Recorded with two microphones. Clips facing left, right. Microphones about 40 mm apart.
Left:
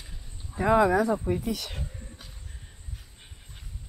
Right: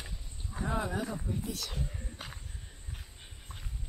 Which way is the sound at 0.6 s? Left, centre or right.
Left.